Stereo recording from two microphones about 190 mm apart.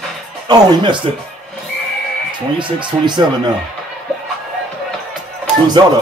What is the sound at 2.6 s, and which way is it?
Speech, 25° right (ahead or behind).